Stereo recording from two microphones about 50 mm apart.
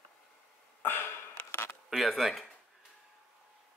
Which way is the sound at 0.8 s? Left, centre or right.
Left.